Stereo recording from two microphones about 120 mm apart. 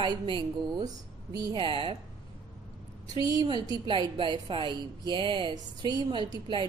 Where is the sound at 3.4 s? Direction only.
35° right (ahead or behind).